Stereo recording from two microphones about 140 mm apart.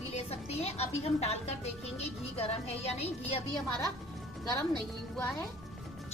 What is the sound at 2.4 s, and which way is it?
A woman's voice, 45° left (ahead or behind).